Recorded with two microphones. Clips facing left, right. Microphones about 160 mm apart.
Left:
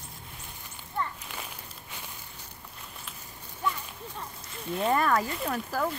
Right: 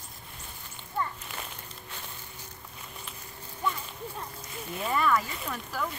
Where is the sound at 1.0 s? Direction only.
10° right (ahead or behind).